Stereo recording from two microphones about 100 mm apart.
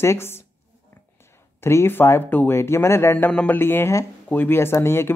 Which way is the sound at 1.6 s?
25° left (ahead or behind).